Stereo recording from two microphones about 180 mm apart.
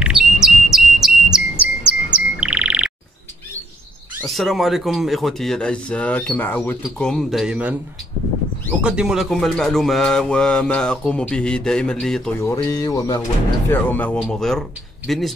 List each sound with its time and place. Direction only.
0.0 s bird: 5° right (ahead or behind)
4.3 s speech: centre (ahead or behind)
8.8 s speech: 5° right (ahead or behind)
12.4 s speech: 15° left (ahead or behind); by 15.3 s centre (ahead or behind)